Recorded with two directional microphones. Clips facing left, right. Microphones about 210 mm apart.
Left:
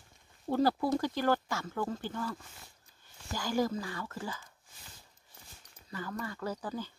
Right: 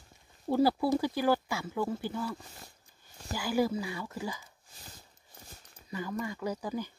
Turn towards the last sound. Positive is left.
turn(degrees=-10)  # may be behind; listen again after turning